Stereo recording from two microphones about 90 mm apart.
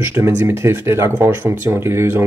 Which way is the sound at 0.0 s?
30° right (ahead or behind).